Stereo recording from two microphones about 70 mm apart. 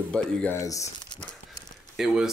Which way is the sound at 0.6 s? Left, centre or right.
Left.